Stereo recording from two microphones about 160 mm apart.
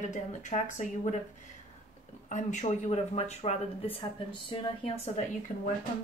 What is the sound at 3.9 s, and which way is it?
Speech, 30° left (ahead or behind).